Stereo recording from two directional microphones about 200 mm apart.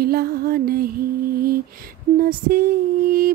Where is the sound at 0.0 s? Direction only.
50° right (ahead or behind).